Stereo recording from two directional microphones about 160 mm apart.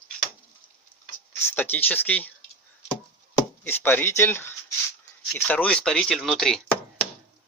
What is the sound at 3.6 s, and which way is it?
Speech, 10° left (ahead or behind).